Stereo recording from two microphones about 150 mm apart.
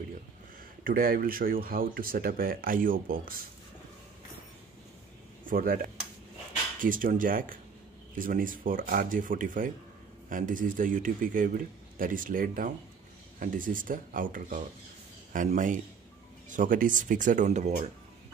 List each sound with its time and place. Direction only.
0.8 s speech: 75° right (ahead or behind)
5.4 s a man's voice: 70° right (ahead or behind); by 17.8 s 50° right (ahead or behind)